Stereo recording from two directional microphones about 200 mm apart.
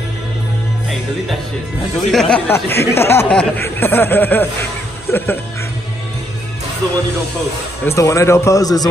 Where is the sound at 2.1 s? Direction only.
5° left (ahead or behind).